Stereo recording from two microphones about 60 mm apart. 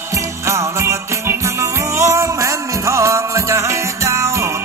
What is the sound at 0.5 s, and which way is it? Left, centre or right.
Music, right.